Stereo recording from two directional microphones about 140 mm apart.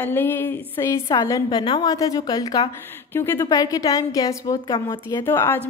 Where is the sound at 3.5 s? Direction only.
25° left (ahead or behind).